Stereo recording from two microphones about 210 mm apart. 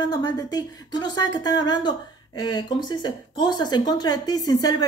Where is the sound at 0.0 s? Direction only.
20° left (ahead or behind).